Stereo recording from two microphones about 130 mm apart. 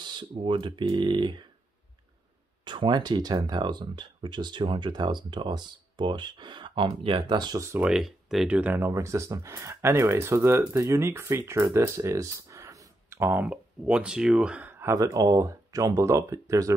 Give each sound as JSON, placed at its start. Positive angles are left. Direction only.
{"t": 0.0, "sound": "speech", "side_deg": -35}
{"t": 2.6, "sound": "speech", "side_deg": -40}
{"t": 7.8, "sound": "speech", "side_deg": 0}
{"t": 8.5, "sound": "speech", "side_deg": -15}